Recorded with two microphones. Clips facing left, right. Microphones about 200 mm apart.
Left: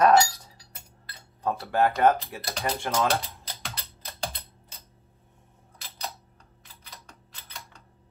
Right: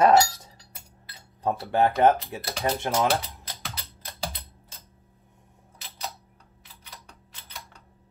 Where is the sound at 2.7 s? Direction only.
20° right (ahead or behind).